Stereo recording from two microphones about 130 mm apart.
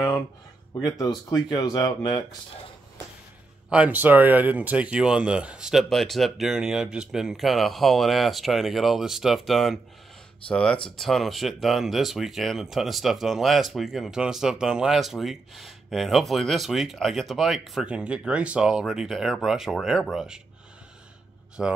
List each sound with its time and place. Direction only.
0.7 s speech: 30° left (ahead or behind)
3.7 s speech: 10° right (ahead or behind)
21.6 s a man's voice: 5° right (ahead or behind)